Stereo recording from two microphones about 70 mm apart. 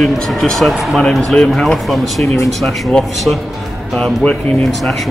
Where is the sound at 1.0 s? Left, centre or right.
Centre.